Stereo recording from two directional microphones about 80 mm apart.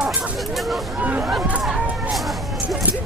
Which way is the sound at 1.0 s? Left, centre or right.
Centre.